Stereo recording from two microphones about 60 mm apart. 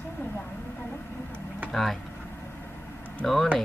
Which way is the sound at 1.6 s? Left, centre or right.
Centre.